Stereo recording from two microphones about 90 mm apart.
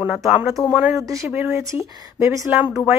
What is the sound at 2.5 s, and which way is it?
Speech, 15° right (ahead or behind).